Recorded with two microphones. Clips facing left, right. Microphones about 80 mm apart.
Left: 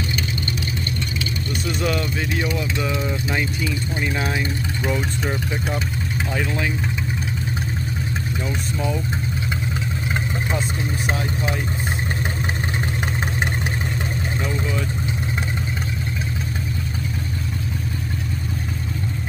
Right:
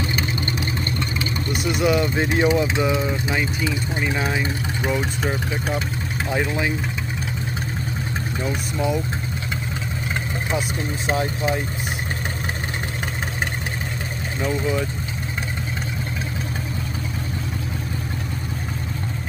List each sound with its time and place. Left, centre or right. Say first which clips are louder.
1.8 s speech: right 5 dB; centre
2.1 s speech: right 5 dB; right
3.0 s speech: right 1 dB; centre
8.5 s speech: right 3 dB; centre
14.4 s speech: right 6 dB; centre